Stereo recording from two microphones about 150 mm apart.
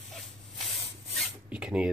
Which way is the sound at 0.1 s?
Centre (ahead or behind).